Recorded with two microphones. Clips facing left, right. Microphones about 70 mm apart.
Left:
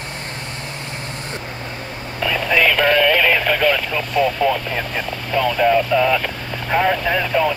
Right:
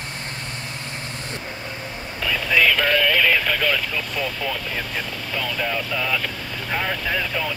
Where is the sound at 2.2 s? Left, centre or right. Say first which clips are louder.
Left 3 dB; left.